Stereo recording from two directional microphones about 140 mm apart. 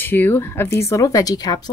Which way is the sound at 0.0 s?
15° left (ahead or behind).